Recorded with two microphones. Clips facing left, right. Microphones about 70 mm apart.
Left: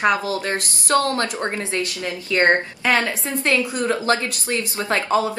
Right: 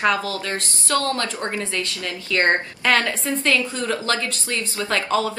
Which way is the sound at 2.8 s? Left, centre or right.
Centre.